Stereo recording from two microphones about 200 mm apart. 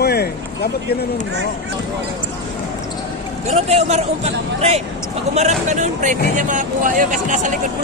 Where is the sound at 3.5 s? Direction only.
35° right (ahead or behind).